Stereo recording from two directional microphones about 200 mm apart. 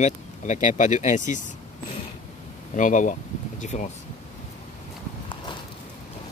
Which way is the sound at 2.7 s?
40° left (ahead or behind).